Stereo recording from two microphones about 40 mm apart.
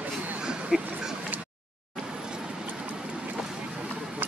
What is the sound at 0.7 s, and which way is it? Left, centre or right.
Speech, centre.